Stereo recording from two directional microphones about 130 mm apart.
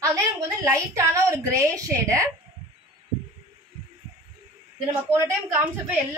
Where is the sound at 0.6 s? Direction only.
25° right (ahead or behind).